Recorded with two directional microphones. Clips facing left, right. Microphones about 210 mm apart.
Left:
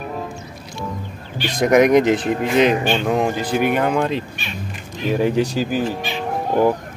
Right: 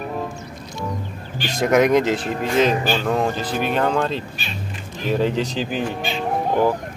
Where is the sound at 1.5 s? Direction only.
15° left (ahead or behind).